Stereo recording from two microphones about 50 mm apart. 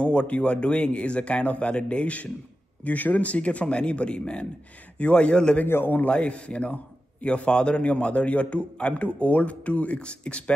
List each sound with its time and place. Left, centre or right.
0.0 s a man's voice: left
5.7 s a man's voice: left
6.0 s a man's voice: left